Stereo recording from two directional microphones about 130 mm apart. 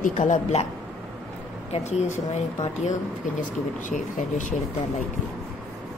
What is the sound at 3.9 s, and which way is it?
Speech, 75° left (ahead or behind).